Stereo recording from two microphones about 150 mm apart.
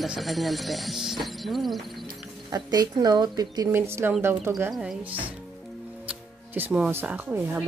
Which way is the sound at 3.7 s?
15° right (ahead or behind).